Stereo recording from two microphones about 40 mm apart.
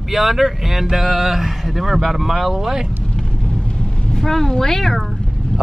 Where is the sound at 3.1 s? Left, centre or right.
Left.